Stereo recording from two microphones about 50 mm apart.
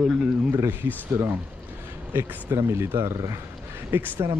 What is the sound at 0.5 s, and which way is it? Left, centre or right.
Speech, right.